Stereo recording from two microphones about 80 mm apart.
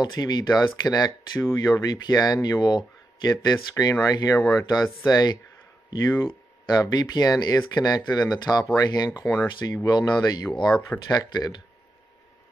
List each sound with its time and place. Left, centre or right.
0.0 s speech: left
11.1 s speech: left